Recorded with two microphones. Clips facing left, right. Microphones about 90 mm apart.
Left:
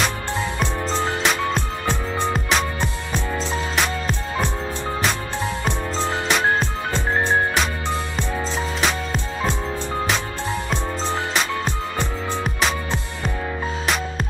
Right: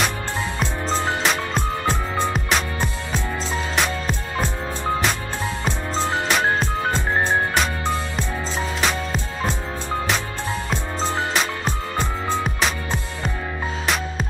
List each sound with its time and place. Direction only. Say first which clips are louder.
0.6 s music: right 1 dB; centre (ahead or behind)
6.2 s music: left 3 dB; centre (ahead or behind)
12.4 s music: left 1 dB; centre (ahead or behind)